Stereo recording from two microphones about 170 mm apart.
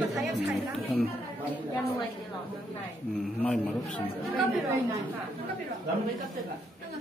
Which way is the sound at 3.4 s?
10° left (ahead or behind).